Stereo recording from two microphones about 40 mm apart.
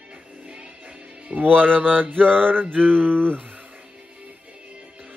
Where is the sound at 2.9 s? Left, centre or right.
Right.